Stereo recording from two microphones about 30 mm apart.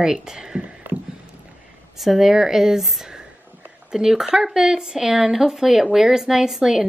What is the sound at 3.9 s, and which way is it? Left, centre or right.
A woman's voice, centre.